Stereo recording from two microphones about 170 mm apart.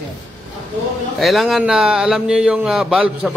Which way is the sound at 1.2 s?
Centre (ahead or behind).